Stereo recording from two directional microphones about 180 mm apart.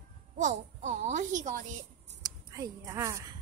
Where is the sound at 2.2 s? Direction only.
20° right (ahead or behind).